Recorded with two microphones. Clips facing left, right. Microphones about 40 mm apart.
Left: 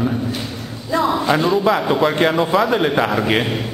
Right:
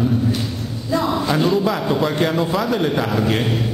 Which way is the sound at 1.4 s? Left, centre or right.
Centre.